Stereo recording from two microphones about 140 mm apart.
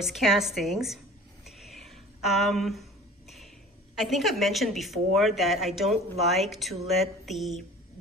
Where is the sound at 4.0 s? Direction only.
Centre (ahead or behind).